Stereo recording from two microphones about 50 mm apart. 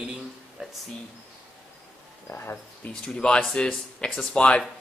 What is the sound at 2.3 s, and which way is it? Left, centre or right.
Speech, left.